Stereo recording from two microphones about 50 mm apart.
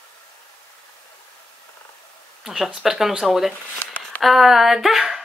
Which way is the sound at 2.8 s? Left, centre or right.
Centre.